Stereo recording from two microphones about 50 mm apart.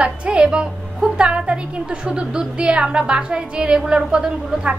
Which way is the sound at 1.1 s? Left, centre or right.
Centre.